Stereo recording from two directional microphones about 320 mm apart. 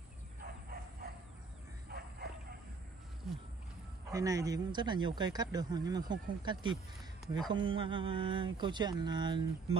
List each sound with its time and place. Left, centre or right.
0.4 s bow-wow: right
4.1 s speech: centre